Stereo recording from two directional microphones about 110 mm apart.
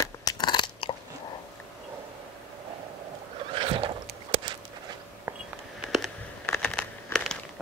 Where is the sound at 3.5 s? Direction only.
50° right (ahead or behind).